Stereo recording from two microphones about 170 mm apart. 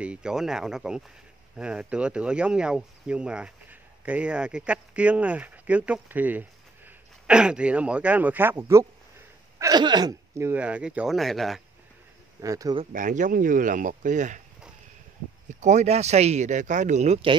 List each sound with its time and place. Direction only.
0.0 s speech: 5° right (ahead or behind)
12.4 s speech: 20° right (ahead or behind)
12.9 s speech: 50° right (ahead or behind)
15.6 s speech: 40° right (ahead or behind)